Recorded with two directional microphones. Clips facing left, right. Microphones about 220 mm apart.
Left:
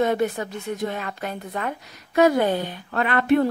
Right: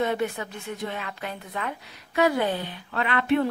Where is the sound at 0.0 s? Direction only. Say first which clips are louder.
Left 4 dB; 40° left (ahead or behind).